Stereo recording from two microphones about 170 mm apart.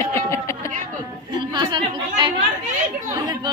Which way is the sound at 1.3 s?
25° right (ahead or behind).